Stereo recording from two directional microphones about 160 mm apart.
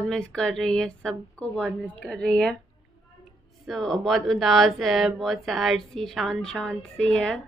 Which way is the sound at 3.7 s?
Centre (ahead or behind).